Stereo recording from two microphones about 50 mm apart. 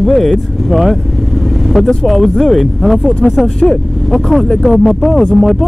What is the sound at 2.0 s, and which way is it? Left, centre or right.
Speech, centre.